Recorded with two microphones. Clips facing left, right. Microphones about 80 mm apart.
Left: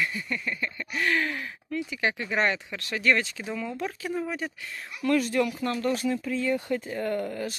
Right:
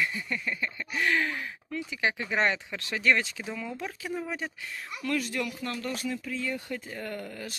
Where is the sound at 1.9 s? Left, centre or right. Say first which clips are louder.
Even; centre.